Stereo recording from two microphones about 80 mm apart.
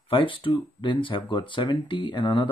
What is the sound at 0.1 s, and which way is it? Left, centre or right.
Speech, left.